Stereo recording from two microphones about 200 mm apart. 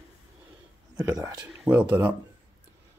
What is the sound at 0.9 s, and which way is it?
Speech, 15° right (ahead or behind).